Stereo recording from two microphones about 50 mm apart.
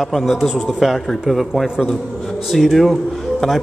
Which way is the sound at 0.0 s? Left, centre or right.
Centre.